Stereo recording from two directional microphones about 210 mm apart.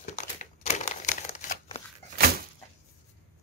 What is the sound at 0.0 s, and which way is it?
Crumpling, 35° left (ahead or behind).